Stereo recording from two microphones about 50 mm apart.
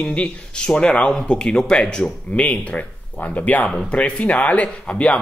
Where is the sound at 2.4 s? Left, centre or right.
Left.